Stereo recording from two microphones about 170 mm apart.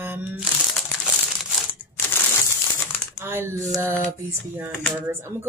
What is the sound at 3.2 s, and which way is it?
A woman's voice, 15° right (ahead or behind).